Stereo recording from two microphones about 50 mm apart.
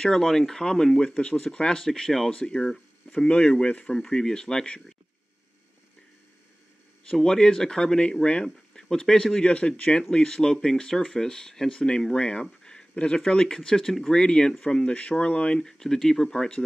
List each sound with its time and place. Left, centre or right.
0.0 s speech: centre
7.2 s speech: centre
9.4 s speech: left
12.6 s a sound: centre
13.3 s speech: centre